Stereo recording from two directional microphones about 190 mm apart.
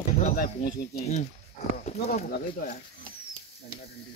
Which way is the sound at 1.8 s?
35° left (ahead or behind).